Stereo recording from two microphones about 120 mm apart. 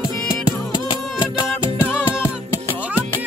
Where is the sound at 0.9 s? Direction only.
40° left (ahead or behind).